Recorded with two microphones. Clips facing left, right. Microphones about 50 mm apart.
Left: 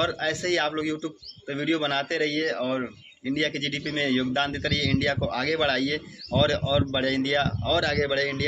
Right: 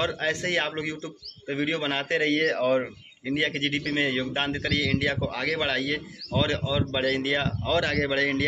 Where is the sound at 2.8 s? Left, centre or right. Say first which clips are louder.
Left 1 dB; right.